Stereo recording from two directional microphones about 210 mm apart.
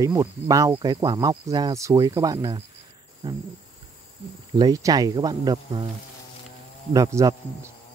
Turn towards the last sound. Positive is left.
turn(degrees=-15)  # may be behind; listen again after turning